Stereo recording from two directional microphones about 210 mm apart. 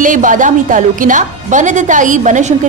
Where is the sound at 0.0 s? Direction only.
40° right (ahead or behind).